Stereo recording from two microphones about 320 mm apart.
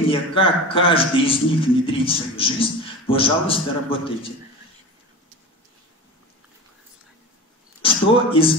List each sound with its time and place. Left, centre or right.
0.1 s a man's voice: centre
7.8 s speech: centre